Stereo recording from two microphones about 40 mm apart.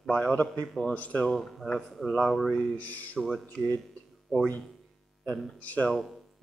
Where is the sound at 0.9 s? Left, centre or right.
Left.